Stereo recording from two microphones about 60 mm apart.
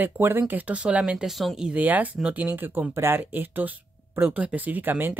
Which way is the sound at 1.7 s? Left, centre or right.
Right.